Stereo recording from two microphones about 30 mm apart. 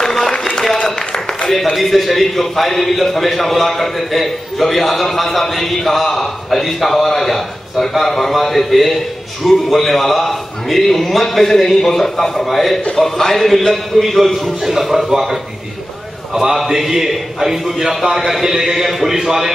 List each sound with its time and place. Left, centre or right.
0.0 s a sound: centre
1.5 s a man's voice: centre
16.3 s a man's voice: centre